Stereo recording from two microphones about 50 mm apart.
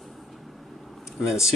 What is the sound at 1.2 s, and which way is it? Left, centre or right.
Speech, centre.